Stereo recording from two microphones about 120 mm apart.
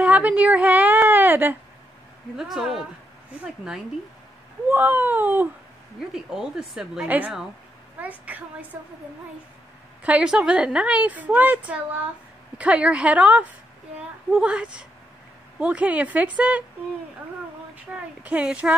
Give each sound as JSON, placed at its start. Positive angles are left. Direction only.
{"t": 0.0, "sound": "a sound", "side_deg": -10}
{"t": 2.3, "sound": "speech", "side_deg": -5}
{"t": 4.6, "sound": "a woman's voice", "side_deg": -15}
{"t": 5.9, "sound": "a woman's voice", "side_deg": -5}
{"t": 10.0, "sound": "a woman's voice", "side_deg": -10}
{"t": 17.9, "sound": "a woman's voice", "side_deg": -10}